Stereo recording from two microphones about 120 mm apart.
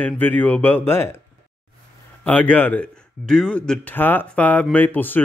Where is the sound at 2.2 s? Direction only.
10° left (ahead or behind).